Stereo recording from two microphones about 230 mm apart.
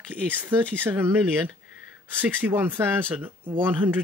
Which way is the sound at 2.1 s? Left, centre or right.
Centre.